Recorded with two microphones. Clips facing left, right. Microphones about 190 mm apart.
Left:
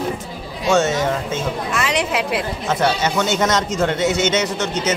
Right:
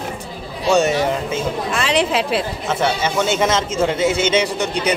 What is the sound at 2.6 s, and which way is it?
Speech, 5° right (ahead or behind).